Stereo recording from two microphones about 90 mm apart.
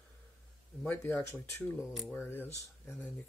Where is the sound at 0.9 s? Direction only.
25° left (ahead or behind).